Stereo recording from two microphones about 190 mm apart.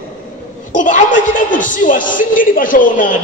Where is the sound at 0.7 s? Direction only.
40° left (ahead or behind).